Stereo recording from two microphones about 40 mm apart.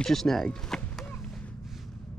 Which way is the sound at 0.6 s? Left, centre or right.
Centre.